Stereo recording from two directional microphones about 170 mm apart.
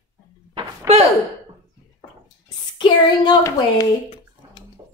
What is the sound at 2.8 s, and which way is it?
Speech, 20° left (ahead or behind).